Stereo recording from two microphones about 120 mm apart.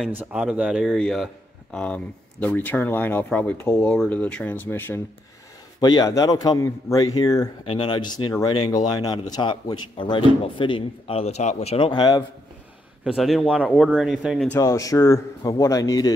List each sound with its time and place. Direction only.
0.1 s a man's voice: 10° right (ahead or behind); by 3.8 s 25° left (ahead or behind)
3.8 s speech: 10° left (ahead or behind)
5.8 s speech: 35° left (ahead or behind)
7.6 s speech: 45° left (ahead or behind)
11.9 s speech: 35° left (ahead or behind)
13.0 s a man's voice: centre (ahead or behind)
14.6 s speech: 30° left (ahead or behind)